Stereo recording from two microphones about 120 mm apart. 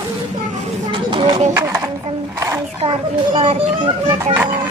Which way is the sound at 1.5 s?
20° right (ahead or behind).